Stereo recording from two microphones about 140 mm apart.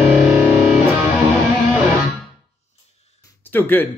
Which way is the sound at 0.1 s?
10° right (ahead or behind).